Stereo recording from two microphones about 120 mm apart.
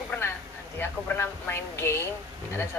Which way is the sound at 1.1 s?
20° left (ahead or behind).